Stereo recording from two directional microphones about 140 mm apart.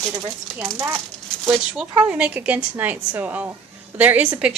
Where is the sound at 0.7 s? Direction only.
15° right (ahead or behind).